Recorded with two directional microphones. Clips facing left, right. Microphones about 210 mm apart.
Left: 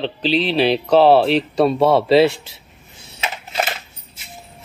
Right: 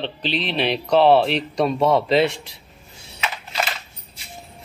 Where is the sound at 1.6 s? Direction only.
30° left (ahead or behind).